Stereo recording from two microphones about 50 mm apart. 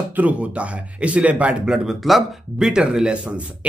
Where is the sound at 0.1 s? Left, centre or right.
Right.